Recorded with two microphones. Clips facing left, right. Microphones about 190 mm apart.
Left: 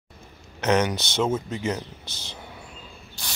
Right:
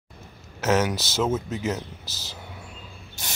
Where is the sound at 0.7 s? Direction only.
Centre (ahead or behind).